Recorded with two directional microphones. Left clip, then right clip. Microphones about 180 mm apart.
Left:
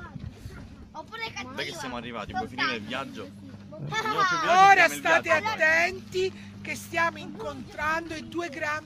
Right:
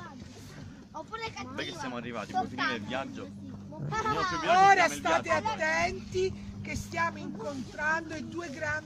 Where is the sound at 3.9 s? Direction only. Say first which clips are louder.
Left 5 dB; centre (ahead or behind).